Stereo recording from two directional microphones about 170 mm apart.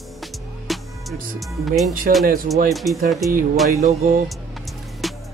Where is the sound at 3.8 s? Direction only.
50° right (ahead or behind).